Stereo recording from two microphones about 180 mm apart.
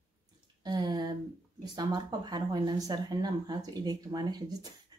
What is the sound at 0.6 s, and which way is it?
Speech, 25° right (ahead or behind).